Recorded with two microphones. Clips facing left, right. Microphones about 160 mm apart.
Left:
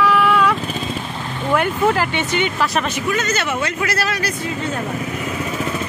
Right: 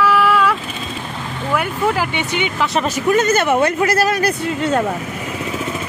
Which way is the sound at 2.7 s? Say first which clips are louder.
Right 5 dB; 40° right (ahead or behind).